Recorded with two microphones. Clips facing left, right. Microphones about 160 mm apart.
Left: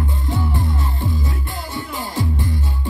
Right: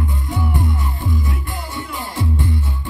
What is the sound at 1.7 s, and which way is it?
Music, 20° left (ahead or behind).